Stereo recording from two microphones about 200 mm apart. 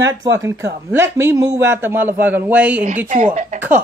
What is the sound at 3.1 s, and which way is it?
Speech, 40° right (ahead or behind).